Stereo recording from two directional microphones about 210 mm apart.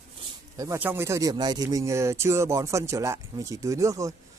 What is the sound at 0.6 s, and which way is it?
A man's voice, 10° right (ahead or behind).